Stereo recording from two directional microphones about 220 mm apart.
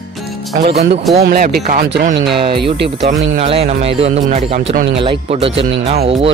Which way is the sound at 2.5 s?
50° right (ahead or behind).